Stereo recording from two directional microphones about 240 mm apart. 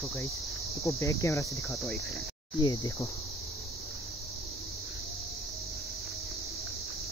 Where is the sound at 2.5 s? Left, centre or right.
Centre.